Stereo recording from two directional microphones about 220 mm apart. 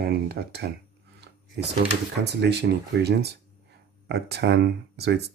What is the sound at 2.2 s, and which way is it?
Speech, 50° right (ahead or behind).